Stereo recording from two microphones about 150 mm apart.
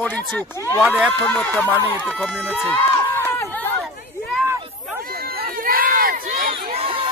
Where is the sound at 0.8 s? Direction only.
5° right (ahead or behind).